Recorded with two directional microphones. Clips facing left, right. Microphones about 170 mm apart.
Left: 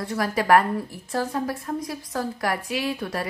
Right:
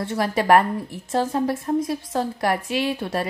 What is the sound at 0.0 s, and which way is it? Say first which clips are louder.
A woman's voice: right 2 dB; 25° right (ahead or behind).